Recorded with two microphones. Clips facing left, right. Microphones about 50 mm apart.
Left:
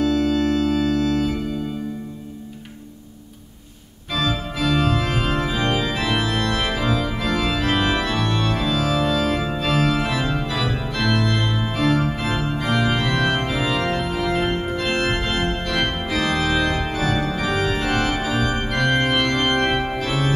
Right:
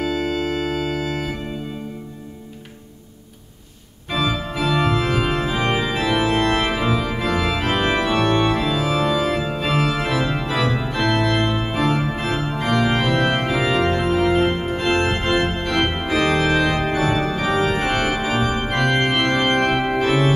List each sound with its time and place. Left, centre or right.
0.0 s organ: right
4.1 s organ: centre
5.9 s organ: centre
6.2 s organ: right
6.7 s organ: centre
11.7 s organ: centre
12.7 s organ: centre
13.0 s organ: right
16.7 s organ: right